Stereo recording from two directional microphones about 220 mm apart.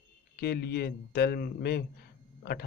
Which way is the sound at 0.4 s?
45° left (ahead or behind).